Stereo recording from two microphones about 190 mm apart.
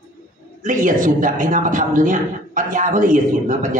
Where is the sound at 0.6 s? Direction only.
45° right (ahead or behind).